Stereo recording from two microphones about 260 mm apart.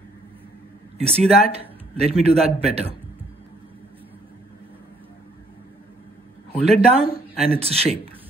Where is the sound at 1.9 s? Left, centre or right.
Right.